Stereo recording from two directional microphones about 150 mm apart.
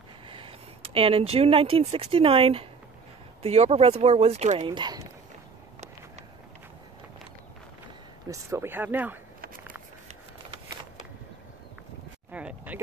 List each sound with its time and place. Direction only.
0.3 s speech: 35° right (ahead or behind)
4.6 s speech: 30° right (ahead or behind)
8.3 s speech: 20° right (ahead or behind)
12.3 s a sound: 10° right (ahead or behind)